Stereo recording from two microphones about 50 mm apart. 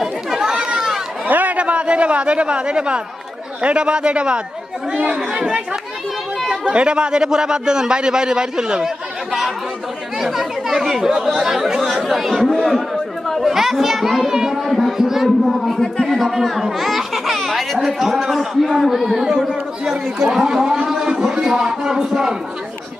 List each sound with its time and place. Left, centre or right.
0.0 s chatter: centre
1.2 s a man's voice: right
6.6 s a man's voice: right
10.2 s a man's voice: centre